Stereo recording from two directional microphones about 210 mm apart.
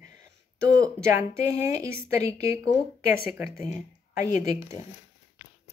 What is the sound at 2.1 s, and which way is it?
Speech, 15° right (ahead or behind).